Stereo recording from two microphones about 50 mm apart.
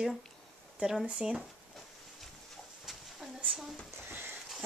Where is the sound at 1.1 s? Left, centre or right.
Centre.